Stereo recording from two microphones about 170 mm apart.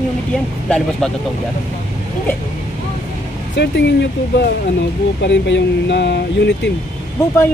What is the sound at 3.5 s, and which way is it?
Speech, 90° left.